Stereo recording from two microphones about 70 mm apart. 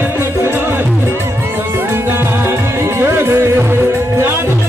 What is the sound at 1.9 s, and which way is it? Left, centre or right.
Music, right.